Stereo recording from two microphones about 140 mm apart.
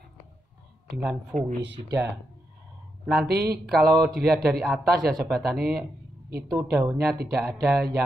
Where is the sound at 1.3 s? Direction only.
70° right (ahead or behind).